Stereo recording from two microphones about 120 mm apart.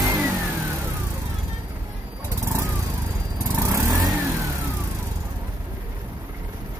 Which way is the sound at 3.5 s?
25° right (ahead or behind).